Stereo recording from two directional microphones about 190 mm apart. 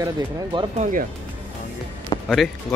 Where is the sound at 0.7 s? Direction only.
40° right (ahead or behind).